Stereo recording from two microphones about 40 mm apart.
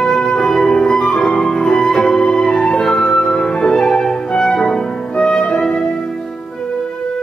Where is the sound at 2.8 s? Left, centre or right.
Centre.